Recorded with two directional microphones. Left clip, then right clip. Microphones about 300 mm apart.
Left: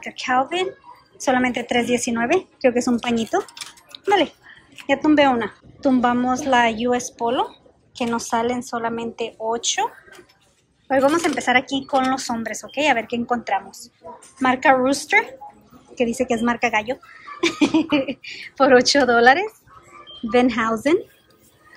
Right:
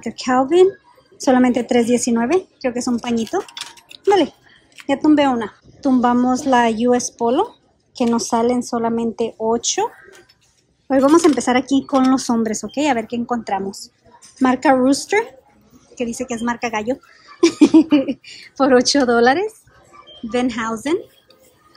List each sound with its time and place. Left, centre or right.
0.0 s a woman's voice: centre
4.8 s speech: centre
10.9 s speech: centre